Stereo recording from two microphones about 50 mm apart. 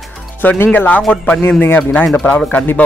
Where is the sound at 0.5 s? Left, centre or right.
Left.